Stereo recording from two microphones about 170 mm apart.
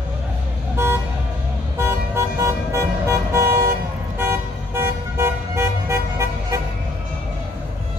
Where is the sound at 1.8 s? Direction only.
15° right (ahead or behind).